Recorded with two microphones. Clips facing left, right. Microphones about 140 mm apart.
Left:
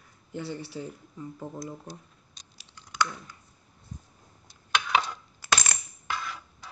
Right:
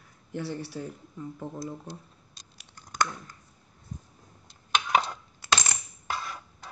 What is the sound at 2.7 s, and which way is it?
Computer keyboard, 45° right (ahead or behind).